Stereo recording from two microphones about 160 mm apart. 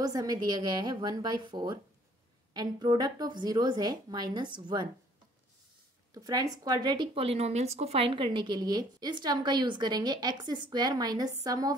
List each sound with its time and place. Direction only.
0.0 s speech: 25° right (ahead or behind)
6.1 s speech: 20° right (ahead or behind)